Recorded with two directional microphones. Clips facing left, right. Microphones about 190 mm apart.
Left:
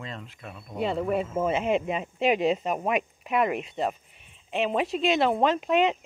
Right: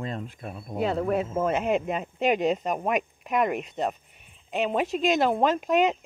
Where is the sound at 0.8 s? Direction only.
Centre (ahead or behind).